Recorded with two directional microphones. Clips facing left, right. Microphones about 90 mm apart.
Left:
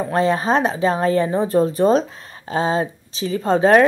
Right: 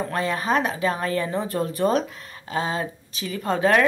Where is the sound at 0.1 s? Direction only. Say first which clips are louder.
Left 7 dB; 30° left (ahead or behind).